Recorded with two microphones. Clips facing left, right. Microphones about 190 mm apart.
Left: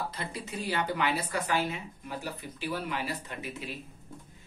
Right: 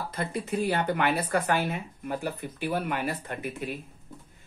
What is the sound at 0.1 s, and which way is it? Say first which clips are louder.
Speech: right 8 dB; 50° right (ahead or behind).